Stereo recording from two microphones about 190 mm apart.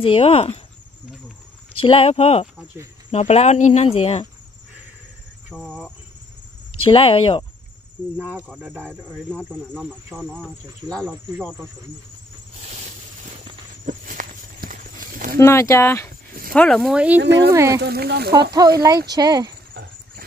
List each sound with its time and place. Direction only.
0.0 s speech: 30° left (ahead or behind)
1.8 s cricket: 30° left (ahead or behind)
5.5 s speech: 5° right (ahead or behind)
6.8 s speech: 30° left (ahead or behind)
8.2 s speech: 10° right (ahead or behind)
10.1 s speech: centre (ahead or behind)
13.8 s walk: 45° right (ahead or behind)
15.3 s speech: 15° left (ahead or behind); by 17.2 s 5° right (ahead or behind)
17.2 s speech: 65° right (ahead or behind)
17.5 s speech: 15° right (ahead or behind)
17.7 s speech: 55° right (ahead or behind)
18.5 s speech: 20° right (ahead or behind)
19.7 s rodents: 55° right (ahead or behind)